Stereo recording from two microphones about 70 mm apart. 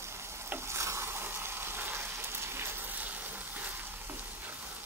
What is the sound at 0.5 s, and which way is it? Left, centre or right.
Frying, right.